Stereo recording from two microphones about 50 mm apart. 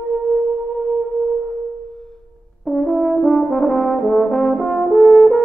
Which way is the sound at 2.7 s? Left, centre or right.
Centre.